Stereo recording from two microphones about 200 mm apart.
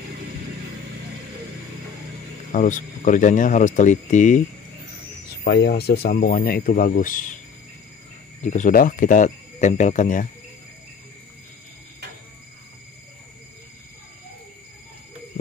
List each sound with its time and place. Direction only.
2.5 s speech: 40° left (ahead or behind)
5.3 s speech: 55° left (ahead or behind)
8.5 s speech: 40° left (ahead or behind)